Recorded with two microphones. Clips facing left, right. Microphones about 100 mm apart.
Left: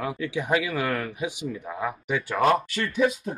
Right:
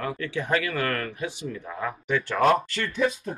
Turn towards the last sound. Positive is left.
turn(degrees=10)  # may be behind; listen again after turning